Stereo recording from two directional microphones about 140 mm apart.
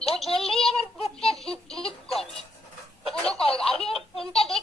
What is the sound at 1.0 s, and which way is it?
Baby laughter, 45° left (ahead or behind).